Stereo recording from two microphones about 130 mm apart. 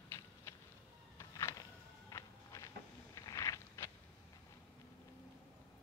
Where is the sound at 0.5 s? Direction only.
20° left (ahead or behind).